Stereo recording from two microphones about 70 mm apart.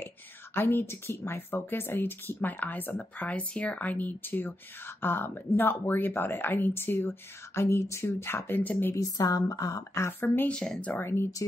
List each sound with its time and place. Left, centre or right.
0.6 s speech: left
8.9 s a woman's voice: left
10.5 s speech: centre
11.0 s speech: left